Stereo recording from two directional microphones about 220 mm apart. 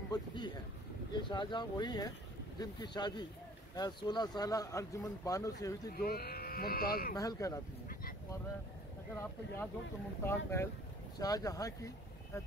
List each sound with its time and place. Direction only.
0.1 s a sound: 20° left (ahead or behind)
1.3 s speech: 20° left (ahead or behind)
5.9 s speech: 45° left (ahead or behind)
7.2 s speech: 15° left (ahead or behind)
9.1 s speech: 10° left (ahead or behind)